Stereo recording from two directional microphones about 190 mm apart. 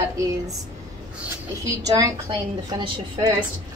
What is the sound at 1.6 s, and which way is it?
A woman's voice, 15° right (ahead or behind).